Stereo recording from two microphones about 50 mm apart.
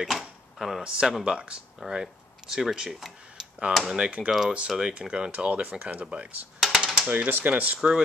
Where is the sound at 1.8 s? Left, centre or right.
Centre.